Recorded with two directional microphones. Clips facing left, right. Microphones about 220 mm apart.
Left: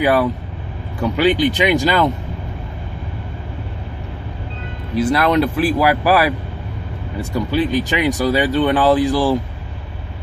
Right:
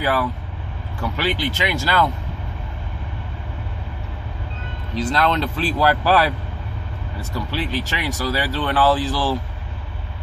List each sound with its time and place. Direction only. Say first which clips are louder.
0.0 s speech: left 6 dB; 15° left (ahead or behind)
4.9 s speech: left 5 dB; 10° left (ahead or behind)